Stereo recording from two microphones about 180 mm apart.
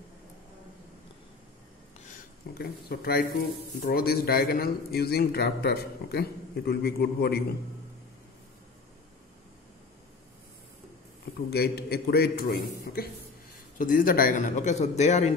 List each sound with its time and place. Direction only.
2.0 s a sound: 60° left (ahead or behind)
3.8 s a man's voice: 60° left (ahead or behind)
11.5 s a man's voice: 60° left (ahead or behind); by 15.3 s 40° left (ahead or behind)